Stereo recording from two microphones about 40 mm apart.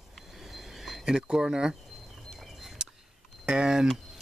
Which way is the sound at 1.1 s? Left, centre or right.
Centre.